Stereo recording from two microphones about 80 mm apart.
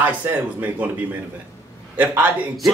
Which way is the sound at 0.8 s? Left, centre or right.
Right.